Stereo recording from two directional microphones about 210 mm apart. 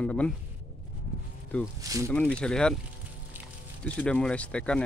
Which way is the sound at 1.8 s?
15° right (ahead or behind).